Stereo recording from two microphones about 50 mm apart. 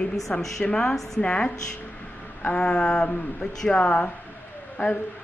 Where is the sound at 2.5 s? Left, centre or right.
Centre.